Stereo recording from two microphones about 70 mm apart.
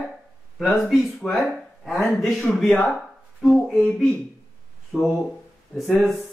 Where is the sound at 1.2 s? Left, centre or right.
Centre.